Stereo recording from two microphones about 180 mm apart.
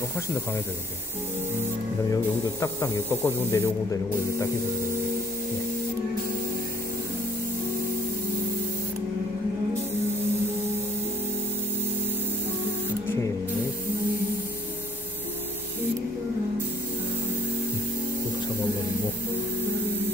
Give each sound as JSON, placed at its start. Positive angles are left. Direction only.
{"t": 2.6, "sound": "speech", "side_deg": 15}